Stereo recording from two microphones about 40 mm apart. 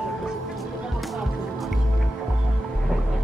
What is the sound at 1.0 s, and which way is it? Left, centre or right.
Music, centre.